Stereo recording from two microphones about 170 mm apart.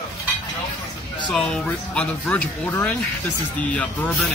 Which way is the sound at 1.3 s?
5° left (ahead or behind).